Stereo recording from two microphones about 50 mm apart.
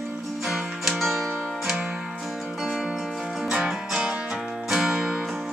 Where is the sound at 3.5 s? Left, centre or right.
Centre.